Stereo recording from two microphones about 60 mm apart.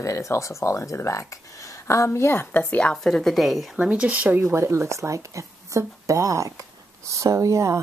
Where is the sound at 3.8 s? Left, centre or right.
Right.